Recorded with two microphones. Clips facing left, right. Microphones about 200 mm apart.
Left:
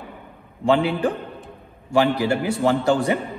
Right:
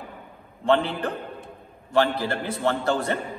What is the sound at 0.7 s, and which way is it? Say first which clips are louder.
A man's voice: left 3 dB; 10° left (ahead or behind).